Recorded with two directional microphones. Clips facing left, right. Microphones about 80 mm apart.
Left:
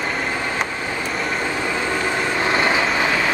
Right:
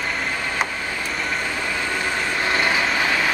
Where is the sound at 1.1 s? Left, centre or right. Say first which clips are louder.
Left 2 dB; centre.